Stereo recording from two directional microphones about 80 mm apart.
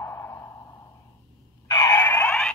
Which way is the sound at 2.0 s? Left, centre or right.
Left.